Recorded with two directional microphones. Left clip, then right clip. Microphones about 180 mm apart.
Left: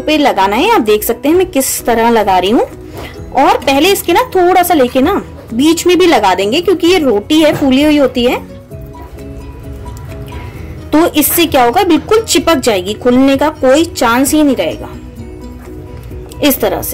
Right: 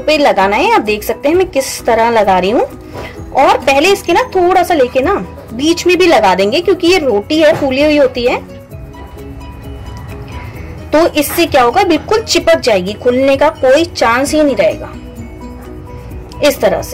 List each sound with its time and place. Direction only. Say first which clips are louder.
0.0 s a woman's voice: right 1 dB; 30° left (ahead or behind)
10.9 s a woman's voice: even; 35° left (ahead or behind)
16.3 s a woman's voice: right 2 dB; 35° left (ahead or behind)